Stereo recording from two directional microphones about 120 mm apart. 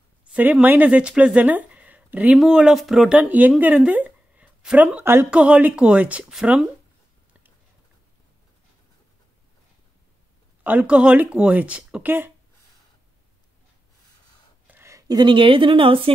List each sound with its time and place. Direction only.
0.2 s speech: 10° right (ahead or behind)
10.6 s speech: 15° right (ahead or behind)
14.7 s speech: 20° right (ahead or behind); by 16.1 s 50° right (ahead or behind)